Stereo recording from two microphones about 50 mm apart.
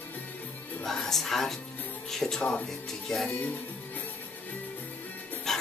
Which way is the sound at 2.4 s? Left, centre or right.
Left.